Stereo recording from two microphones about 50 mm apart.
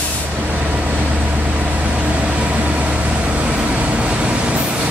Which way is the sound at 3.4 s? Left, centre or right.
Right.